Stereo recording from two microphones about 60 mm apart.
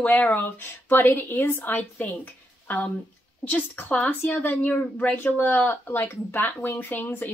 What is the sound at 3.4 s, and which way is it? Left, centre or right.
Speech, left.